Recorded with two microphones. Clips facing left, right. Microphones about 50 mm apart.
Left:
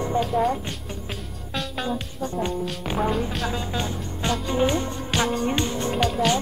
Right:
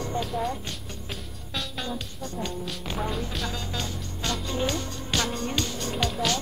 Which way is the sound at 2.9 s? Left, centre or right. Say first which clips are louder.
Left 7 dB; centre.